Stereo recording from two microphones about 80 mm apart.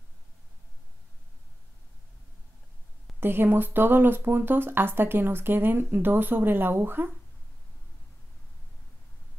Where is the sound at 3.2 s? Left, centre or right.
Right.